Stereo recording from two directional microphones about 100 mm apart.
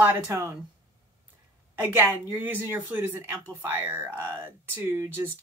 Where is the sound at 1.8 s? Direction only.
20° right (ahead or behind).